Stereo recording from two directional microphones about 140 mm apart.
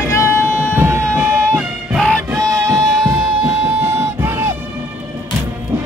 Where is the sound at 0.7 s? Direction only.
15° right (ahead or behind).